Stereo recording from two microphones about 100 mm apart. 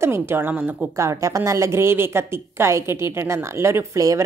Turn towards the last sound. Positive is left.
turn(degrees=-30)  # may be behind; listen again after turning